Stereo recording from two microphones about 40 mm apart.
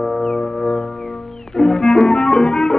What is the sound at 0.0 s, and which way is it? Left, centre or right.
Music, centre.